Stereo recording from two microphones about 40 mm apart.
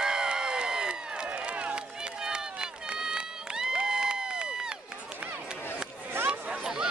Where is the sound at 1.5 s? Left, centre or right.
Right.